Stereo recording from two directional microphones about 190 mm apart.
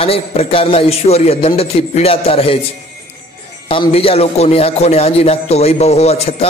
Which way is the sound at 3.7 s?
30° left (ahead or behind).